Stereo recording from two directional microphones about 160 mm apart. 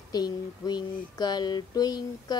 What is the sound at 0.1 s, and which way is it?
Music, 25° left (ahead or behind).